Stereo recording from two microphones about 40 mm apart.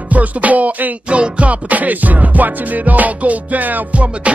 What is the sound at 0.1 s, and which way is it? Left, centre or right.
Music, right.